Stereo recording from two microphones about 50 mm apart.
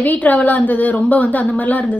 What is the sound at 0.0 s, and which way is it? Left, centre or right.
Speech, left.